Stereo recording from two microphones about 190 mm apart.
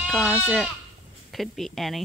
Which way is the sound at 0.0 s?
5° right (ahead or behind).